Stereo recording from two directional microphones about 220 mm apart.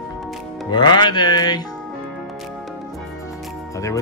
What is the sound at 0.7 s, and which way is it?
Music, 20° left (ahead or behind).